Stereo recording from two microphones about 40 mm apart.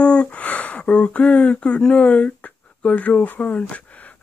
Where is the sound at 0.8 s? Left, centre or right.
Left.